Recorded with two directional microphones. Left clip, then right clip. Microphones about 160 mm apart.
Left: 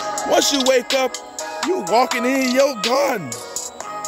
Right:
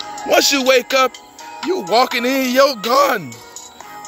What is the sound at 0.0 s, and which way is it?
Music, 25° left (ahead or behind).